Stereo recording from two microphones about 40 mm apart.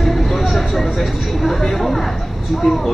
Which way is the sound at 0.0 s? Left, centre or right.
Centre.